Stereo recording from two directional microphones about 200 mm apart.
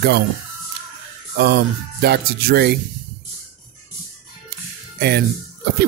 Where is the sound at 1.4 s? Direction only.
55° right (ahead or behind).